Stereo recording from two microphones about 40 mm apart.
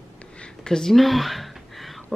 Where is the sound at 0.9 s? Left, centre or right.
Centre.